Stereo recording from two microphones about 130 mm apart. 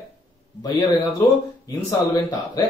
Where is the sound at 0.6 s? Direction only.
30° left (ahead or behind).